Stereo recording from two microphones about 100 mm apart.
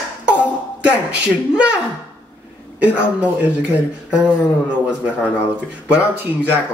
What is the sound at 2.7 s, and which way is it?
Speech, 15° right (ahead or behind).